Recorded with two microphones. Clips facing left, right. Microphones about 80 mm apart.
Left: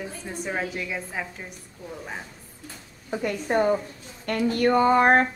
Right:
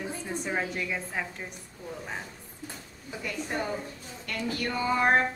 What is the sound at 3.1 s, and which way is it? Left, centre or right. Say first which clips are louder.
Speech: left 9 dB; left.